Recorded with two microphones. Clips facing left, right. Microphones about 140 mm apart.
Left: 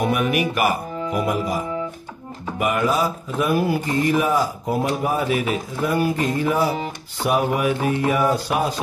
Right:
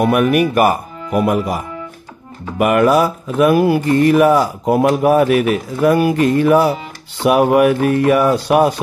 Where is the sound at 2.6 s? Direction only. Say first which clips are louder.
Right 8 dB; 65° right (ahead or behind).